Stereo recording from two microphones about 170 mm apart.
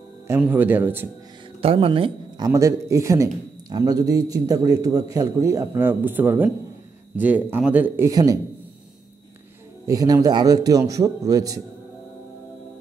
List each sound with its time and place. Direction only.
0.3 s speech: 10° right (ahead or behind)
1.6 s a man's voice: 30° right (ahead or behind)
9.8 s a man's voice: 20° right (ahead or behind)